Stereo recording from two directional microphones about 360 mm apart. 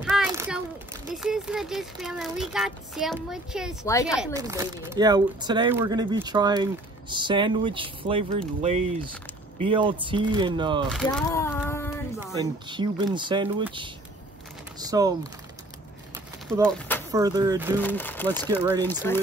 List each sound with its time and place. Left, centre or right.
0.0 s a sound: centre
1.1 s speech: centre
4.2 s speech: centre
10.9 s speech: centre
12.4 s speech: centre
16.4 s speech: centre
17.1 s speech: centre
17.8 s speech: centre